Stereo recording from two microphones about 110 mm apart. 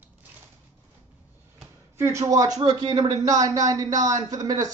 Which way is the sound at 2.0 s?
25° right (ahead or behind).